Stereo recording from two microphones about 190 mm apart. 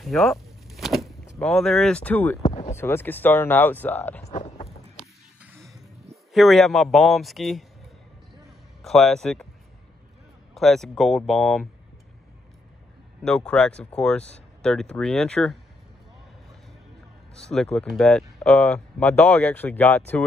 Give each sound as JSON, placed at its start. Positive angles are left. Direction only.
{"t": 0.0, "sound": "speech", "side_deg": 0}
{"t": 2.4, "sound": "a sound", "side_deg": 30}
{"t": 2.7, "sound": "speech", "side_deg": 10}
{"t": 4.2, "sound": "a sound", "side_deg": 35}
{"t": 4.9, "sound": "music", "side_deg": -5}
{"t": 6.3, "sound": "speech", "side_deg": 0}
{"t": 8.5, "sound": "a sound", "side_deg": 0}
{"t": 10.5, "sound": "speech", "side_deg": 0}
{"t": 13.2, "sound": "speech", "side_deg": 5}
{"t": 17.4, "sound": "speech", "side_deg": 5}